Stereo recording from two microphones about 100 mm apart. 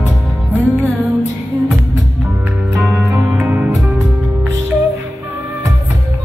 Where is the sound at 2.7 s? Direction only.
15° right (ahead or behind).